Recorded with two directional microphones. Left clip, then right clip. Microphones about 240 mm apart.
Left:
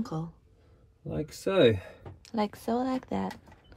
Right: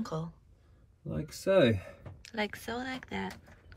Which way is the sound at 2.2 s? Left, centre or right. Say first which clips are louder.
Left 4 dB; centre.